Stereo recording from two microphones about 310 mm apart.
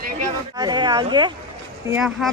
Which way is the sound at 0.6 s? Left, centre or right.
Centre.